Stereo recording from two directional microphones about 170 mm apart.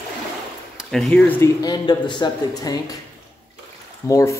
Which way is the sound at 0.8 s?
Centre (ahead or behind).